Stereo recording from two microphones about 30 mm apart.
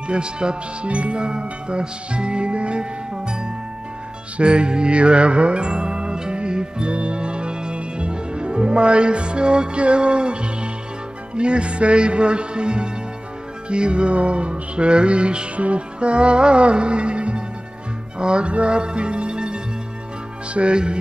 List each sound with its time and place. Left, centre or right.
0.1 s music: right
0.8 s music: right